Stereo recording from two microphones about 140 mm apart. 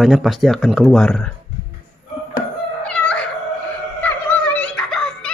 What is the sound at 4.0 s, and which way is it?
Music, 10° left (ahead or behind).